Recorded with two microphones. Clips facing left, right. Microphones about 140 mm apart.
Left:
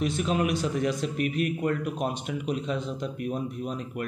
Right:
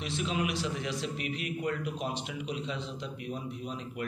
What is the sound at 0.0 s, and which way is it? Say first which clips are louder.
A man's voice: left 6 dB; 50° left (ahead or behind).